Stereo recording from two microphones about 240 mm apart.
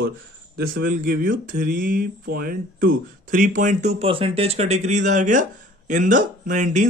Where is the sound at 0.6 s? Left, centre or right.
Right.